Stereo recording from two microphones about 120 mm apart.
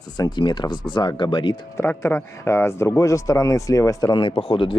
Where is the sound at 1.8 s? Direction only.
20° left (ahead or behind).